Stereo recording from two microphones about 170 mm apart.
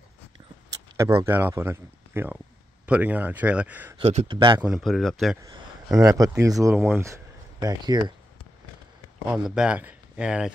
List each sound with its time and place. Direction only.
0.9 s speech: 20° right (ahead or behind)
4.0 s speech: 40° right (ahead or behind)
4.3 s speech: 30° right (ahead or behind)
4.6 s speech: 5° right (ahead or behind)
5.9 s speech: 20° right (ahead or behind)
9.3 s speech: 5° right (ahead or behind)